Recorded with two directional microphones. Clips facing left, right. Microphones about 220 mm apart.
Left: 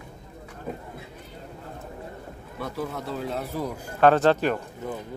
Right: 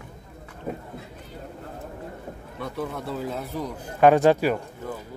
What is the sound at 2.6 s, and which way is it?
Speech, centre (ahead or behind).